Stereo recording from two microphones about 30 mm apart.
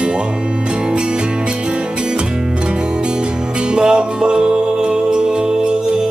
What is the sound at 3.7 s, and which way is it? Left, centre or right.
Music, right.